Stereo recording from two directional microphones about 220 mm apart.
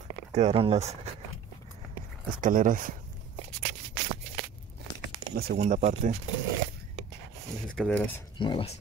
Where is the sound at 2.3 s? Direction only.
35° right (ahead or behind).